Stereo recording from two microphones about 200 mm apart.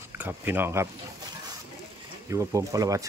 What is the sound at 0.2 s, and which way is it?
Speech, 10° right (ahead or behind).